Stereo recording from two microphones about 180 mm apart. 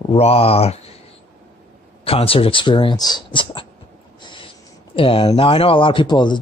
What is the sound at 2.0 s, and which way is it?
Speech, 30° left (ahead or behind).